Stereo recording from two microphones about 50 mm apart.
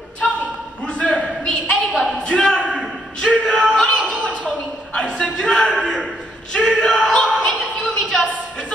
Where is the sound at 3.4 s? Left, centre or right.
Right.